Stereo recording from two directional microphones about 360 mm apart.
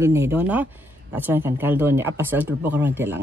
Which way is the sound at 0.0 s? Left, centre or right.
Centre.